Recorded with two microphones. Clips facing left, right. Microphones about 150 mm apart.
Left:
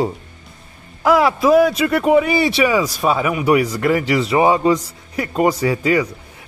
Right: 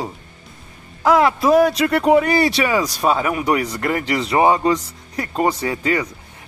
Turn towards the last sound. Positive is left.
turn(degrees=10)  # may be behind; listen again after turning